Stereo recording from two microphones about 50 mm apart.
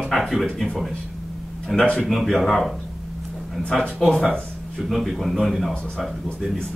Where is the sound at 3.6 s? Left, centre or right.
Left.